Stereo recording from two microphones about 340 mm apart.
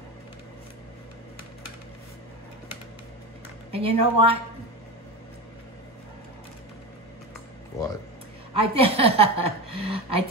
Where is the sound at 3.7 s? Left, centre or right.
Centre.